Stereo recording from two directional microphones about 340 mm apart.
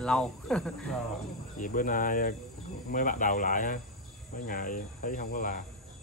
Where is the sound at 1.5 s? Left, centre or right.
Left.